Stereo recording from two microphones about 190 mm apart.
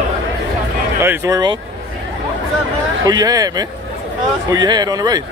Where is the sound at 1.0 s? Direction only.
15° right (ahead or behind).